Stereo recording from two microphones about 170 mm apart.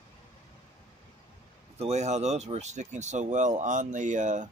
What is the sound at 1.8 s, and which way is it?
Speech, 40° right (ahead or behind).